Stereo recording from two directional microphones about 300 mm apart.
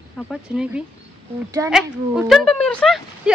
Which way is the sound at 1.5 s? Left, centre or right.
Centre.